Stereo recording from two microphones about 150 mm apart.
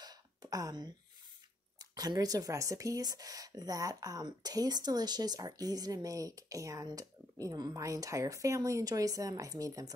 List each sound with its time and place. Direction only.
0.0 s throat clearing: 25° right (ahead or behind)
1.8 s speech: 25° right (ahead or behind)